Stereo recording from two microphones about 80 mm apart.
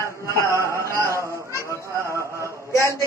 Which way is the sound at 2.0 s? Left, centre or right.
Right.